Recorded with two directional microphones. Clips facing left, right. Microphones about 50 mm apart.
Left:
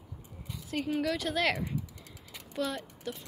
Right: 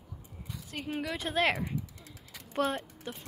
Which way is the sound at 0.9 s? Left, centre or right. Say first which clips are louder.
Left 3 dB; centre.